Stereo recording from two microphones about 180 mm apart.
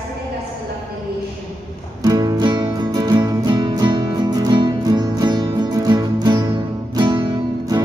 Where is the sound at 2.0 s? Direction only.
20° right (ahead or behind).